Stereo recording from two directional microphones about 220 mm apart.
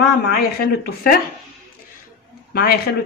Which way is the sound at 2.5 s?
45° left (ahead or behind).